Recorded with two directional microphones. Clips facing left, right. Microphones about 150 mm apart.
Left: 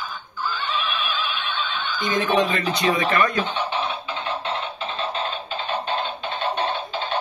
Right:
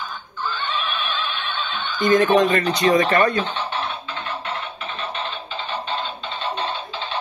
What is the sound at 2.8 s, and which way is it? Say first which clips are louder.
Speech: right 4 dB; 40° right (ahead or behind).